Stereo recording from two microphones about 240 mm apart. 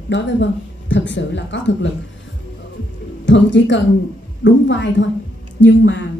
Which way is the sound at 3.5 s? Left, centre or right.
Left.